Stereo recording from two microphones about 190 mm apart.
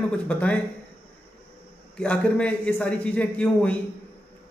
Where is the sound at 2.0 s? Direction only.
5° left (ahead or behind).